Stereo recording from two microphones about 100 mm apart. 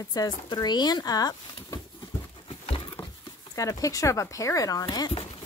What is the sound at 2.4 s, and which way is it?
Dog, 60° left (ahead or behind).